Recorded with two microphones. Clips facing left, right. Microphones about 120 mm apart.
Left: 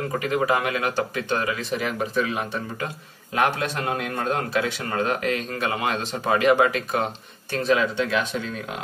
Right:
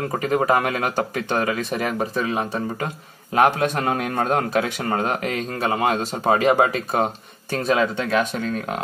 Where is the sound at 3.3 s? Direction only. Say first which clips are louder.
Right 5 dB; 45° right (ahead or behind).